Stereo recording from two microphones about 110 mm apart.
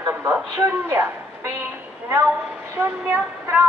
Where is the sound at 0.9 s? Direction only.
25° right (ahead or behind).